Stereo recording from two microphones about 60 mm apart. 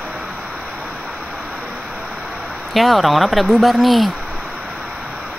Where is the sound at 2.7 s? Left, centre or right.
Centre.